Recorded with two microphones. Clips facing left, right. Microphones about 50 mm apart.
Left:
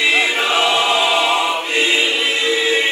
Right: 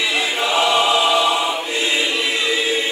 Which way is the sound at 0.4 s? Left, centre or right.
Left.